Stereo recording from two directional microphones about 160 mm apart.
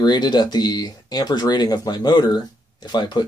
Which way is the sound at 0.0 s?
25° left (ahead or behind).